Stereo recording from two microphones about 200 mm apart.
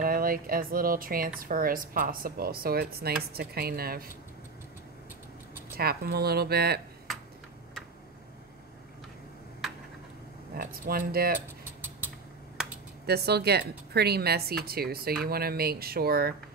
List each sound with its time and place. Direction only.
0.0 s speech: 45° right (ahead or behind)
5.8 s speech: 50° right (ahead or behind)
10.5 s speech: 45° right (ahead or behind)
13.0 s speech: 55° right (ahead or behind)